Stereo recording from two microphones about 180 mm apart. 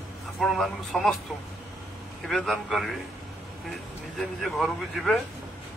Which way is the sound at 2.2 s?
Centre (ahead or behind).